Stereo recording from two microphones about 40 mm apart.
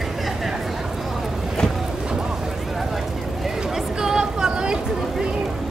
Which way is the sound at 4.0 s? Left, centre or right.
Centre.